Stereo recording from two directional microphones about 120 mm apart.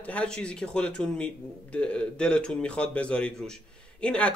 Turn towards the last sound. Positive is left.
turn(degrees=10)  # may be behind; listen again after turning